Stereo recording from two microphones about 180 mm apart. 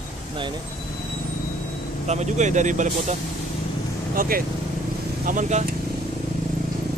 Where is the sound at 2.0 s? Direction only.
40° right (ahead or behind).